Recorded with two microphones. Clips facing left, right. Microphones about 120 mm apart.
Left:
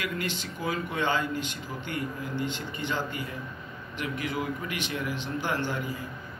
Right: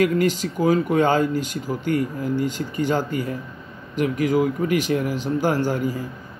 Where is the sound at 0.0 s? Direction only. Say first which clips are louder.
Right 14 dB; 40° right (ahead or behind).